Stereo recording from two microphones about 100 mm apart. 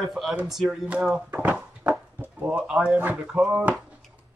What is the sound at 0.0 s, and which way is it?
Speech, 5° right (ahead or behind).